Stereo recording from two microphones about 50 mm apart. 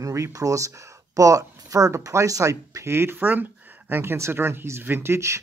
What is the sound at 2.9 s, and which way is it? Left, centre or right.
Speech, right.